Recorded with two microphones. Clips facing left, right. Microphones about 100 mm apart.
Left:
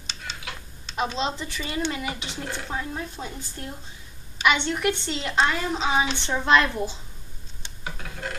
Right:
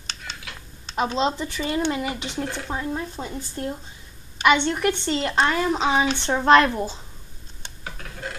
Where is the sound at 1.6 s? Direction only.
35° right (ahead or behind).